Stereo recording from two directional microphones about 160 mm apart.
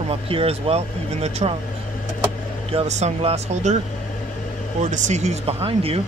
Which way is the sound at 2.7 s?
45° right (ahead or behind).